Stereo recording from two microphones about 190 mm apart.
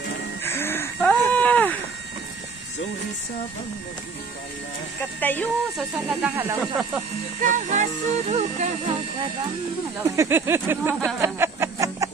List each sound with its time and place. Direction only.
0.4 s a sound: 10° left (ahead or behind)
5.2 s speech: 10° left (ahead or behind)
5.9 s speech: 5° right (ahead or behind)
6.6 s speech: centre (ahead or behind)
7.4 s speech: 40° right (ahead or behind)
10.0 s speech: 15° right (ahead or behind)
11.1 s music: 15° right (ahead or behind)